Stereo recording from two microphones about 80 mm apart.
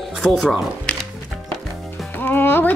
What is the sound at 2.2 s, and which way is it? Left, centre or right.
Music, left.